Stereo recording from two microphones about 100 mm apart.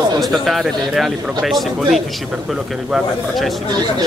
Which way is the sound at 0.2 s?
Centre (ahead or behind).